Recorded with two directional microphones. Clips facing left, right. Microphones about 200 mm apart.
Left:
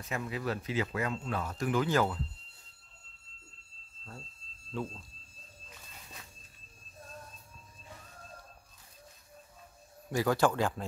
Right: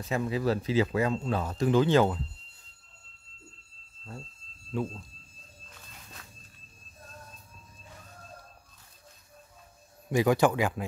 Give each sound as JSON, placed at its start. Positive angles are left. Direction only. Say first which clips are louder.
{"t": 0.0, "sound": "speech", "louder": "right 7 dB", "side_deg": -30}
{"t": 10.1, "sound": "a man's voice", "louder": "right 4 dB", "side_deg": -15}